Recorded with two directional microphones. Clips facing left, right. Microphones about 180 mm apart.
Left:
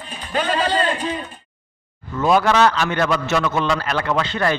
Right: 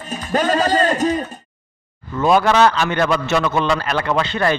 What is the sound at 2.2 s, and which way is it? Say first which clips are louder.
A man's voice: right 2 dB; 25° right (ahead or behind).